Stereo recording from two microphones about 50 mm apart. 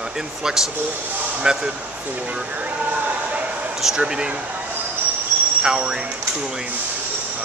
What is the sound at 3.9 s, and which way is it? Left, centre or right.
Speech, centre.